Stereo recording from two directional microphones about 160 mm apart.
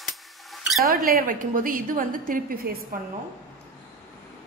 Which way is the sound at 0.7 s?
Centre (ahead or behind).